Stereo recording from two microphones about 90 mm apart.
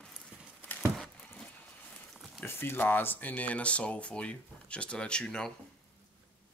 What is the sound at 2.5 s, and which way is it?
Speech, 25° left (ahead or behind).